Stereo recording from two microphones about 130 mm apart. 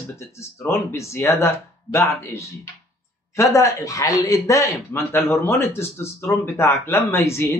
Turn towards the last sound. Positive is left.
turn(degrees=20)  # may be behind; listen again after turning